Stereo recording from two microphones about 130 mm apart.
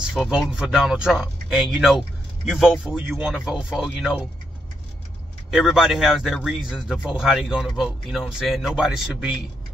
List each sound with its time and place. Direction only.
0.1 s speech: centre (ahead or behind)
5.5 s speech: centre (ahead or behind)